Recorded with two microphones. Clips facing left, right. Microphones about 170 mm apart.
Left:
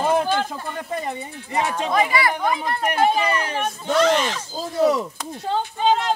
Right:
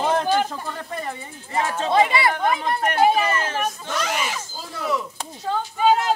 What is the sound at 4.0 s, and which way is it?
Speech, 10° right (ahead or behind).